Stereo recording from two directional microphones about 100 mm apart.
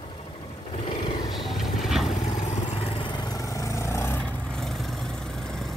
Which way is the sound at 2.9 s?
50° left (ahead or behind).